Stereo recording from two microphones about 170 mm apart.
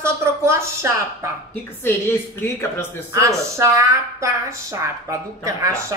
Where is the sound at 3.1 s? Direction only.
20° right (ahead or behind).